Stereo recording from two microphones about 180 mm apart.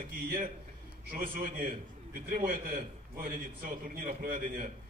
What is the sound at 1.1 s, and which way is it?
A man's voice, 50° right (ahead or behind).